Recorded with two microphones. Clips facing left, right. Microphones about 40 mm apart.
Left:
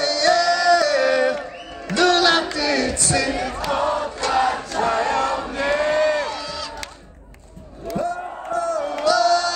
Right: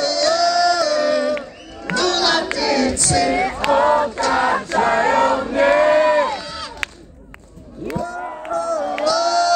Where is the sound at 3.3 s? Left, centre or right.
Right.